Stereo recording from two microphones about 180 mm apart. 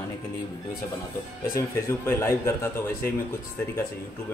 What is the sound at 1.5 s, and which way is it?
Speech, 15° left (ahead or behind).